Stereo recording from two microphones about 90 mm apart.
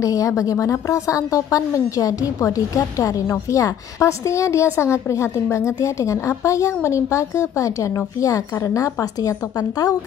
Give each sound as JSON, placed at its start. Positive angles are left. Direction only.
{"t": 0.0, "sound": "a woman's voice", "side_deg": 40}